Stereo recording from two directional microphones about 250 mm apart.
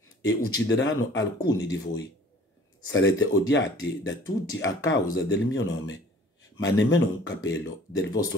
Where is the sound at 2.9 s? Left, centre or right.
Left.